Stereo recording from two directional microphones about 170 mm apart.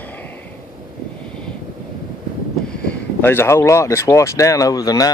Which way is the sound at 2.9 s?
15° left (ahead or behind).